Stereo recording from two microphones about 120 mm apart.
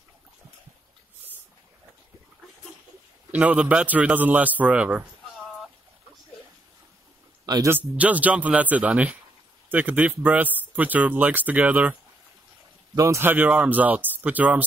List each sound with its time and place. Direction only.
3.3 s speech: 10° right (ahead or behind)
7.4 s speech: 30° right (ahead or behind)
7.7 s speech: 10° right (ahead or behind)
12.9 s speech: 25° right (ahead or behind)